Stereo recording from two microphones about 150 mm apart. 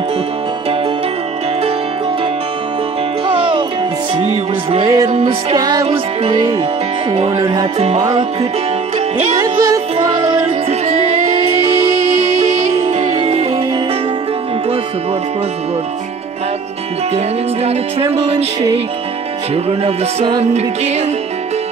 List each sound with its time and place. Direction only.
3.3 s music: 35° right (ahead or behind)
4.8 s music: 25° right (ahead or behind)
5.9 s music: 40° right (ahead or behind)
8.1 s music: 40° right (ahead or behind)
9.3 s music: 25° right (ahead or behind); by 13.5 s 45° right (ahead or behind)
18.1 s music: 45° right (ahead or behind)
19.5 s music: 40° right (ahead or behind)